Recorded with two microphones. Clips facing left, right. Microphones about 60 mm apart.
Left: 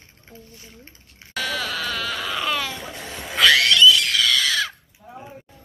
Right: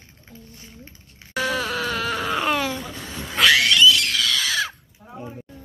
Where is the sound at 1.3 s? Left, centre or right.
Right.